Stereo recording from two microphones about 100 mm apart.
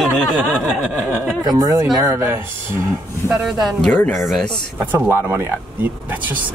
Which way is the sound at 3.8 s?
10° left (ahead or behind).